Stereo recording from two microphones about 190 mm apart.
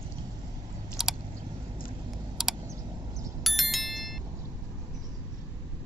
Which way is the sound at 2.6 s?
15° right (ahead or behind).